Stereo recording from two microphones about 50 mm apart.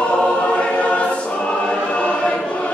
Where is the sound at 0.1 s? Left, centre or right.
Left.